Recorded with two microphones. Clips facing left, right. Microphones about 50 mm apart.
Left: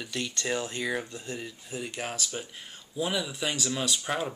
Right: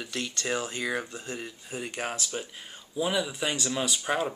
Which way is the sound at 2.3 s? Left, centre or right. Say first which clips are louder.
Right 2 dB; centre.